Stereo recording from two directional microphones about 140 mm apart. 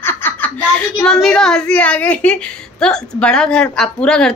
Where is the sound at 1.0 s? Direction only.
5° left (ahead or behind).